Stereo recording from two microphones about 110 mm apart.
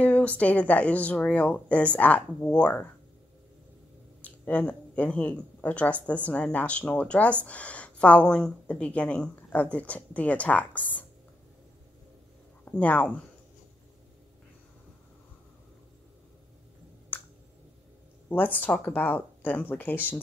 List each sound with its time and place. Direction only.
0.0 s speech: 10° left (ahead or behind)
4.2 s speech: 15° left (ahead or behind)
12.6 s speech: 15° left (ahead or behind)
17.1 s a sound: 15° left (ahead or behind)
18.3 s speech: 15° left (ahead or behind)